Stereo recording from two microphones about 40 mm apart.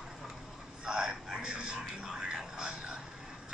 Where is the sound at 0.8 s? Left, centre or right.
Centre.